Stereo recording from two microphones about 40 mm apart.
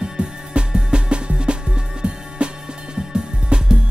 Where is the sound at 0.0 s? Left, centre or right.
Right.